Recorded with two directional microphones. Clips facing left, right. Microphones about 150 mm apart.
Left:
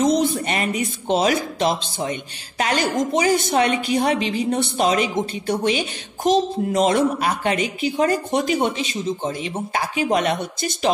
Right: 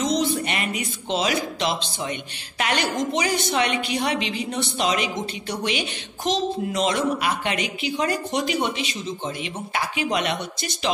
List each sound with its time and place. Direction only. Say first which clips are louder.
0.0 s a woman's voice: left 4 dB; 50° left (ahead or behind)